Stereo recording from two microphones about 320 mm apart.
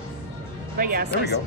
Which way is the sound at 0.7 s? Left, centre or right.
Right.